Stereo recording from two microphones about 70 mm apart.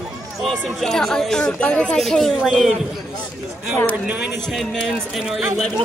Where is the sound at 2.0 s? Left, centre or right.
Centre.